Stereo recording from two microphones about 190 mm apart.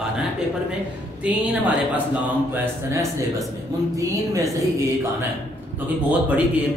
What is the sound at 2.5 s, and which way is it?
Speech, 15° right (ahead or behind).